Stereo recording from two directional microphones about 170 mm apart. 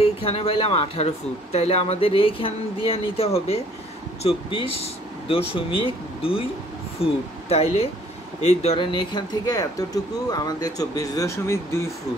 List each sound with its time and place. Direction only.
0.0 s speech: 35° left (ahead or behind)
5.3 s speech: 30° left (ahead or behind); by 11.9 s 15° left (ahead or behind)